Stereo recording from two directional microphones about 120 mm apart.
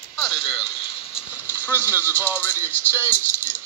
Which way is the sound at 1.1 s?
10° right (ahead or behind).